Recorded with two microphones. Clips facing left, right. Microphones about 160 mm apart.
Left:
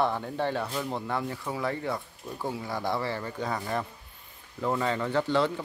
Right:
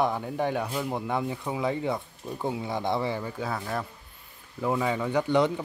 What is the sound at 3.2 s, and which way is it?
Speech, 5° right (ahead or behind).